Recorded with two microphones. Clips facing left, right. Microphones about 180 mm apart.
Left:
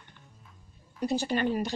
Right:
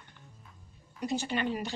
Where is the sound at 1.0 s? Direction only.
35° left (ahead or behind).